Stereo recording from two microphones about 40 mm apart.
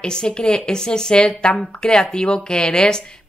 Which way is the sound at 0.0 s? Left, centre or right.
Left.